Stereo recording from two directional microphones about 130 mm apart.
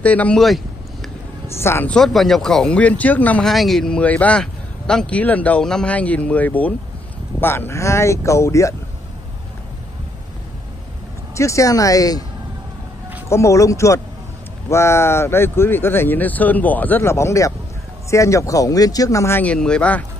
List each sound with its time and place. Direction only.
0.0 s speech: 10° left (ahead or behind)
1.5 s speech: 20° left (ahead or behind)
2.0 s speech: centre (ahead or behind); by 8.7 s 25° left (ahead or behind)
11.3 s speech: 25° left (ahead or behind)
13.3 s speech: 25° left (ahead or behind)